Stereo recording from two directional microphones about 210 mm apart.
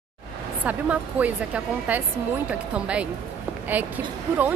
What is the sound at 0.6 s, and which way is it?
A woman's voice, 5° right (ahead or behind).